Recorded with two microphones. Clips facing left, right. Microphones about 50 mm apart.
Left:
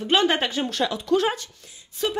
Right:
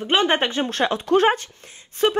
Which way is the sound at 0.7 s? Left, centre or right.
Right.